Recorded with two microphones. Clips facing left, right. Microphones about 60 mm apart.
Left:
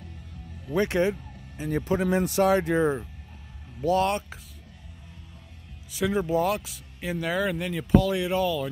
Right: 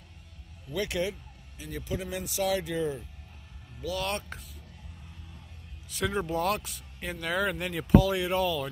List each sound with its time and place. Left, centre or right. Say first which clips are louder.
0.7 s speech: left 7 dB; left
1.6 s speech: left 10 dB; left
5.9 s speech: left 5 dB; centre